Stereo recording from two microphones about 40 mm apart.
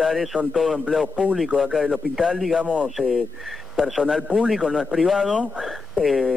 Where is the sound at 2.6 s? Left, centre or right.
Right.